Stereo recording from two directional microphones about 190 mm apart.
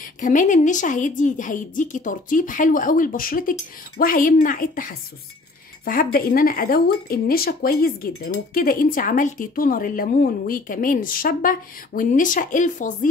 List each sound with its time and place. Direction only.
0.0 s speech: 45° left (ahead or behind)